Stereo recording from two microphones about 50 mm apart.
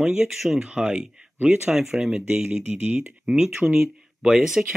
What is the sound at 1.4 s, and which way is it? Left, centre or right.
Speech, right.